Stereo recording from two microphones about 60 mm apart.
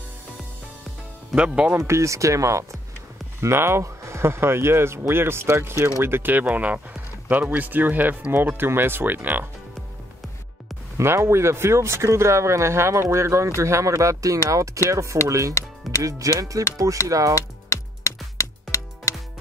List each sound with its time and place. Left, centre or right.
1.3 s speech: centre
1.8 s speech: right
3.3 s speech: right
6.5 s speech: right
11.0 s speech: right
17.6 s music: left